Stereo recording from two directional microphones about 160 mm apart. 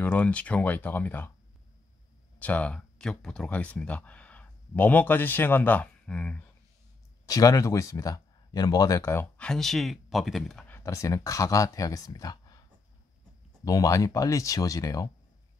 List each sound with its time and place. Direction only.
0.0 s speech: 10° left (ahead or behind)
2.3 s speech: 10° left (ahead or behind)
7.2 s speech: 20° left (ahead or behind); by 10.6 s centre (ahead or behind)
10.7 s speech: 15° left (ahead or behind)
13.7 s speech: 20° left (ahead or behind)